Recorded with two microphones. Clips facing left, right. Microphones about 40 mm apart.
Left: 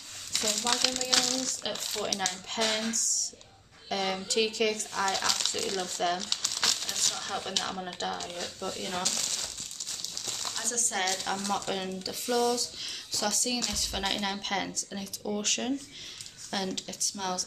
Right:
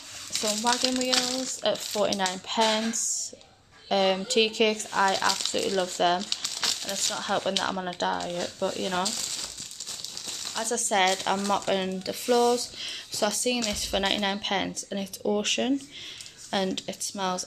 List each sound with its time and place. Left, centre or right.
0.4 s speech: centre
1.6 s speech: right
5.0 s speech: centre
5.9 s speech: right
6.3 s crumpling: centre
7.2 s speech: right
9.0 s crushing: centre
10.5 s speech: right
13.2 s speech: right